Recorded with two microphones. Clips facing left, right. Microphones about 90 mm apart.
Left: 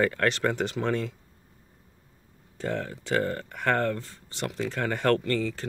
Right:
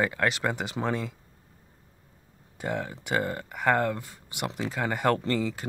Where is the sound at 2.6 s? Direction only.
15° right (ahead or behind).